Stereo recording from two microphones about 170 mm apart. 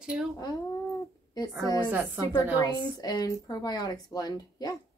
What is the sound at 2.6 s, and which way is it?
Speech, 25° left (ahead or behind).